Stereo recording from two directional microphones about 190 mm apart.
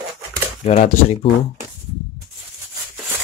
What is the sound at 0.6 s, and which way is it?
Speech, 40° left (ahead or behind).